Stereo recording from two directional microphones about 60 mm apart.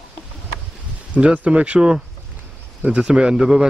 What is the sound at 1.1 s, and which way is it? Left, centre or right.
Speech, right.